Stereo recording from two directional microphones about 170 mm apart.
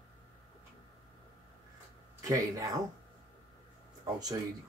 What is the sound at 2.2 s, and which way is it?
Speech, 20° right (ahead or behind).